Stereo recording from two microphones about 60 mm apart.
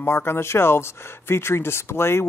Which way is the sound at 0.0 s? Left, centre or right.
Left.